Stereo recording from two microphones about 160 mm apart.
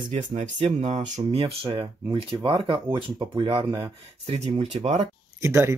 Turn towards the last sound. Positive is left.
turn(degrees=-15)  # may be behind; listen again after turning